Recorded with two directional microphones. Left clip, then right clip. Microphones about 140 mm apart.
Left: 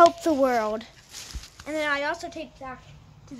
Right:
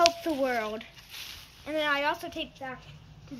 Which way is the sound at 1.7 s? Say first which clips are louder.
Left 2 dB; 25° left (ahead or behind).